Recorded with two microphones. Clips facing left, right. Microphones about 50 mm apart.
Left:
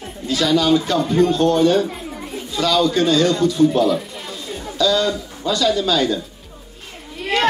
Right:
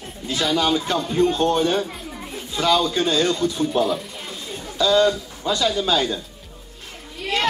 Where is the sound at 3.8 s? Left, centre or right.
Centre.